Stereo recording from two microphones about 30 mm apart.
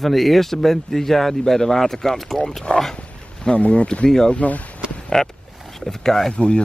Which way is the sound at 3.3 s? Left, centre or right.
Left.